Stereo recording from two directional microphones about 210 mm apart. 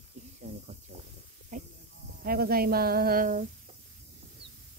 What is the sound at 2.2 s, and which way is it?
Speech, 45° right (ahead or behind).